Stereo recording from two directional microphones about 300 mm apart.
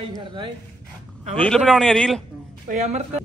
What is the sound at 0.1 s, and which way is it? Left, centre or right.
Speech, centre.